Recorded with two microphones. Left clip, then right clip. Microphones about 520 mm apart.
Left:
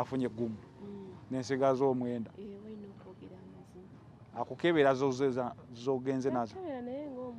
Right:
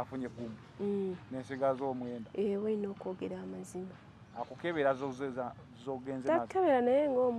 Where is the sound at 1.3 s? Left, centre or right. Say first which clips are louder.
Left 4 dB; left.